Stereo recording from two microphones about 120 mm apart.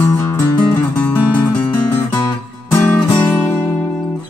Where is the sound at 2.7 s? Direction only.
20° left (ahead or behind).